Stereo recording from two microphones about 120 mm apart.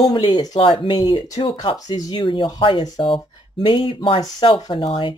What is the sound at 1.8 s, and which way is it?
Speech, 30° left (ahead or behind).